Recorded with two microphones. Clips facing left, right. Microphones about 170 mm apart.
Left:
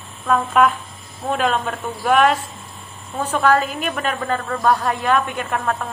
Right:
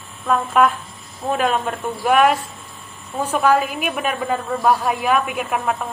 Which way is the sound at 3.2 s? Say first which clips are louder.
Even; 10° right (ahead or behind).